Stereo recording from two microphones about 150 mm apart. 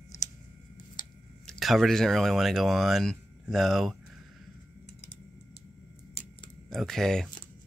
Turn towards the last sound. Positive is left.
turn(degrees=0)  # may be behind; listen again after turning